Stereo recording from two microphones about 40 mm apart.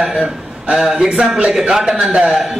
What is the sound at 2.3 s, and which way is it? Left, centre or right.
Speech, centre.